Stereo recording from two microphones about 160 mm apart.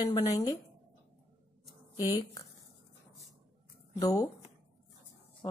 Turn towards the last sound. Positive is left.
turn(degrees=30)  # may be behind; listen again after turning